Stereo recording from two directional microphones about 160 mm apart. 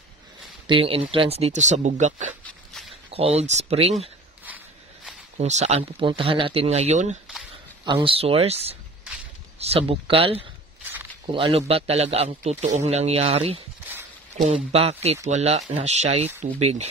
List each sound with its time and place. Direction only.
0.7 s a man's voice: 35° right (ahead or behind)
5.4 s a man's voice: 45° right (ahead or behind)
7.8 s a man's voice: 30° right (ahead or behind)